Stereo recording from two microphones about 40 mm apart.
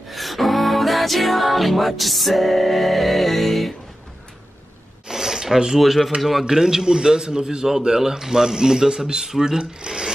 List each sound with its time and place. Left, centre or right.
0.1 s music: centre
5.0 s a sound: centre
5.8 s a man's voice: centre
6.4 s a man's voice: centre